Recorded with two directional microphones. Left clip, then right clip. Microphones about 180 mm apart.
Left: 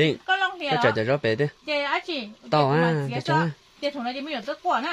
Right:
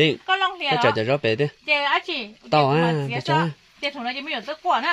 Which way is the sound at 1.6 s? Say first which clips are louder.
Right 5 dB; 45° left (ahead or behind).